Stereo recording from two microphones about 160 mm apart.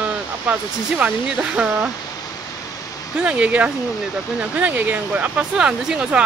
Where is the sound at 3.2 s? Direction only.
10° right (ahead or behind).